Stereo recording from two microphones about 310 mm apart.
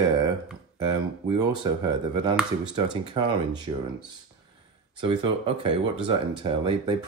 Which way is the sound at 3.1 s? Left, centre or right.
Centre.